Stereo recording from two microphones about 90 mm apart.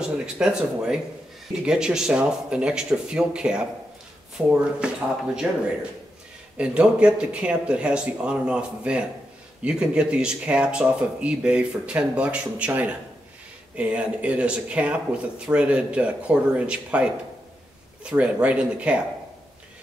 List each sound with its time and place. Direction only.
0.0 s speech: 5° right (ahead or behind)